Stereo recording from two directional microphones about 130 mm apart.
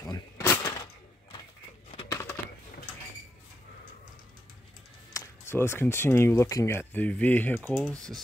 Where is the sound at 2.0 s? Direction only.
20° left (ahead or behind).